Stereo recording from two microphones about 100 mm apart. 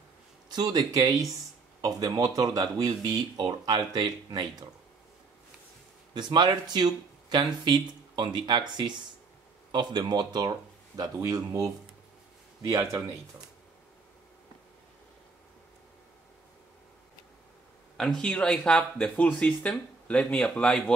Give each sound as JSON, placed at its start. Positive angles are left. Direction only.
{"t": 0.5, "sound": "speech", "side_deg": -40}
{"t": 6.1, "sound": "speech", "side_deg": -45}
{"t": 17.9, "sound": "speech", "side_deg": 5}